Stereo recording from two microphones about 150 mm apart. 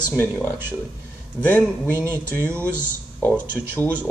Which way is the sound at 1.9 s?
15° right (ahead or behind).